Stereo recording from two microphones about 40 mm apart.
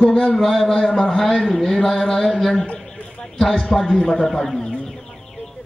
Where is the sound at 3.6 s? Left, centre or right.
Centre.